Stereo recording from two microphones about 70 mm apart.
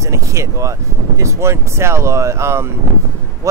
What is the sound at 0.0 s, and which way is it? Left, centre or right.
Speech, right.